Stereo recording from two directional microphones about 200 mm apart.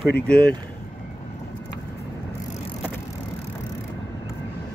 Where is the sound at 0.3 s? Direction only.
5° left (ahead or behind).